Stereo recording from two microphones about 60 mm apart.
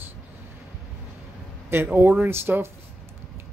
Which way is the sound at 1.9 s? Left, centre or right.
Right.